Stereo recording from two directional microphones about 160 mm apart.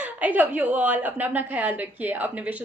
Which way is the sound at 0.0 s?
10° right (ahead or behind).